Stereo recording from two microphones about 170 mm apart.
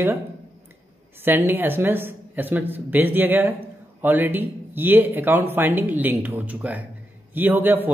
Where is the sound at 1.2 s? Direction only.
10° right (ahead or behind).